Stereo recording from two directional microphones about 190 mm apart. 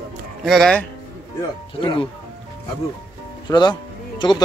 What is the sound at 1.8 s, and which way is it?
Speech, 25° left (ahead or behind).